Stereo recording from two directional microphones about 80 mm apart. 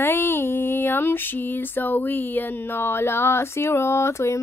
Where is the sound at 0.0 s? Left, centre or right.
Left.